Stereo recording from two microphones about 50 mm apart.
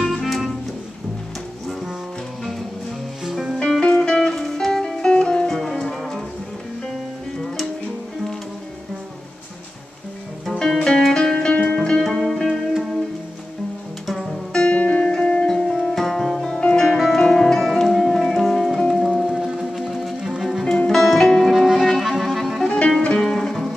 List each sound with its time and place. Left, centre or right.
0.0 s music: centre
3.3 s music: centre
3.8 s music: centre
5.6 s music: centre
10.5 s music: centre
14.0 s music: centre
14.5 s music: centre
14.8 s music: left
15.4 s music: centre
16.4 s music: centre
20.9 s music: centre
22.7 s music: left
23.3 s music: centre